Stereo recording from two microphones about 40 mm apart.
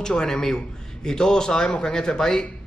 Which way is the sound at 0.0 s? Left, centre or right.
Centre.